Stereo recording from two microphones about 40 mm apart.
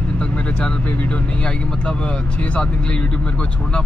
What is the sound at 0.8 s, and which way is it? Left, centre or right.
Speech, left.